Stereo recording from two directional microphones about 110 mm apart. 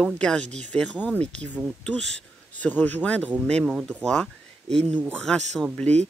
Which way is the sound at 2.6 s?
15° left (ahead or behind).